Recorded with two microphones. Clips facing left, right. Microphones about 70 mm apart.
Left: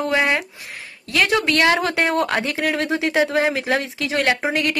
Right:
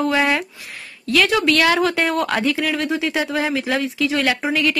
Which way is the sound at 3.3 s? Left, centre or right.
Left.